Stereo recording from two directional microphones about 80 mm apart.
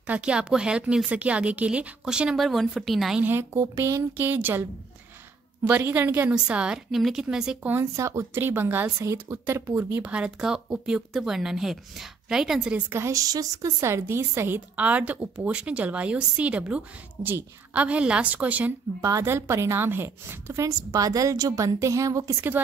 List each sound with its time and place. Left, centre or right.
0.0 s speech: centre
3.2 s a woman's voice: right
5.7 s a woman's voice: right
6.3 s speech: centre
7.8 s a woman's voice: right
10.1 s speech: centre
12.9 s a woman's voice: right
14.8 s a woman's voice: centre
18.9 s a woman's voice: right
19.2 s a woman's voice: right
20.6 s a woman's voice: right